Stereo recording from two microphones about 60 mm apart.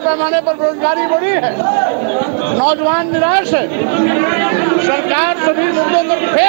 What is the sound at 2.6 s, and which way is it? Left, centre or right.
A man's voice, centre.